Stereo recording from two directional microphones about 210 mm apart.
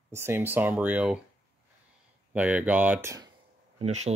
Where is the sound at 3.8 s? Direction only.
30° right (ahead or behind).